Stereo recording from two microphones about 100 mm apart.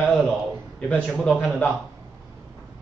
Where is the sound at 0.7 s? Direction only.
15° left (ahead or behind).